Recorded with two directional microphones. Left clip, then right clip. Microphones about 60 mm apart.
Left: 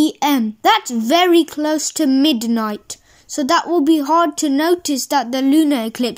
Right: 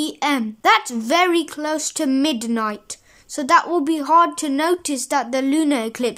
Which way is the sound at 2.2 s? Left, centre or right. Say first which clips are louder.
Left 4 dB; left.